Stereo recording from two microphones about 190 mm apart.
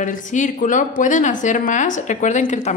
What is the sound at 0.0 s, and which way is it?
A woman's voice, 40° left (ahead or behind).